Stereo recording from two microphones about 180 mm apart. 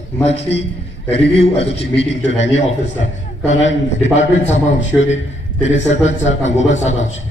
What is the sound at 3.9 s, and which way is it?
Speech, 40° left (ahead or behind).